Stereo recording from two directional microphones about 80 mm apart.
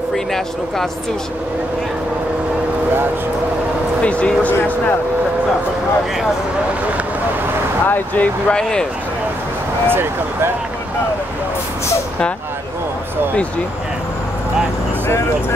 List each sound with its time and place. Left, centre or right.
0.1 s speech: centre
4.0 s speech: centre
7.8 s speech: left
8.5 s speech: centre
9.8 s speech: right